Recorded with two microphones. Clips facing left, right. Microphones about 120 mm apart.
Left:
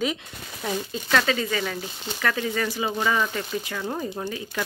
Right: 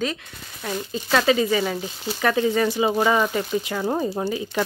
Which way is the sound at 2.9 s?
35° right (ahead or behind).